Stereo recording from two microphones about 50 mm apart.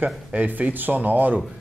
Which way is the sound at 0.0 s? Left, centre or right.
Right.